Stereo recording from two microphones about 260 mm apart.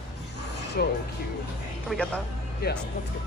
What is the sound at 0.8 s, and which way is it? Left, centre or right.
Speech, left.